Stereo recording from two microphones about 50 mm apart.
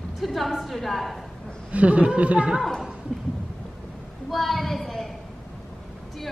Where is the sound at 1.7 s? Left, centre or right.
Right.